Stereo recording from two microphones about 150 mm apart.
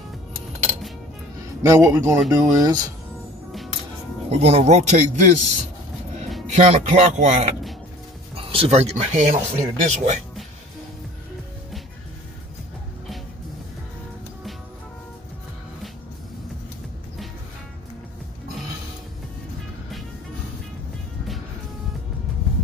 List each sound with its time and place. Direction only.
1.6 s speech: 20° right (ahead or behind)
4.3 s speech: 45° right (ahead or behind)
6.5 s speech: 45° right (ahead or behind)
8.4 s speech: 40° right (ahead or behind)